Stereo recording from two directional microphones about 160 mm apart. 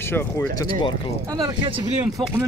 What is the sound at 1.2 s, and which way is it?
Speech, 25° right (ahead or behind).